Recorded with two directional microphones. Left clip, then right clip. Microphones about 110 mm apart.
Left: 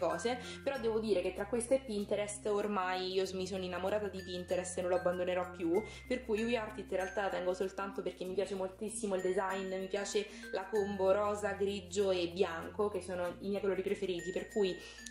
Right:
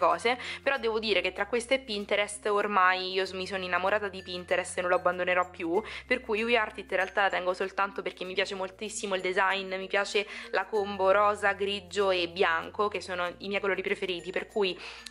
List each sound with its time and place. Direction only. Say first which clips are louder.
0.0 s a woman's voice: right 9 dB; 20° left (ahead or behind)
9.5 s a woman's voice: right 8 dB; 25° left (ahead or behind)